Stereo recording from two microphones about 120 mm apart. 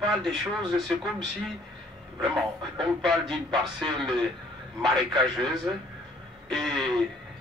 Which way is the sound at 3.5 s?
40° right (ahead or behind).